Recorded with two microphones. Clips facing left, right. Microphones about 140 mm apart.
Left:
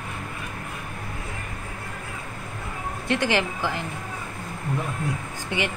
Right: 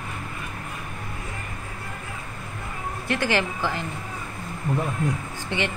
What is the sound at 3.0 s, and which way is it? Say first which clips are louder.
Speech: left 1 dB; 20° left (ahead or behind).